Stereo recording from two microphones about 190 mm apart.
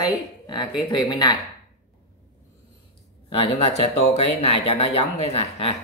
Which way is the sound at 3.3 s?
30° left (ahead or behind).